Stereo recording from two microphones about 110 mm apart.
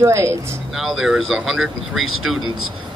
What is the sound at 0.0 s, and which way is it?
Speech, 25° right (ahead or behind).